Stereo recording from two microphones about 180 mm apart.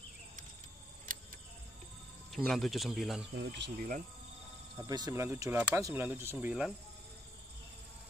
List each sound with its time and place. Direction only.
1.1 s a sound: 50° right (ahead or behind)
2.3 s speech: centre (ahead or behind)
3.3 s speech: 75° right (ahead or behind)
4.8 s speech: 20° right (ahead or behind); by 6.7 s 5° right (ahead or behind)